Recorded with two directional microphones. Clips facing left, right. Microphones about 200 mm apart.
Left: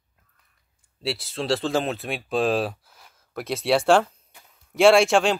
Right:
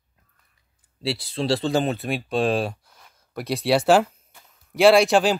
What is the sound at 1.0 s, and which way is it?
Speech, centre (ahead or behind).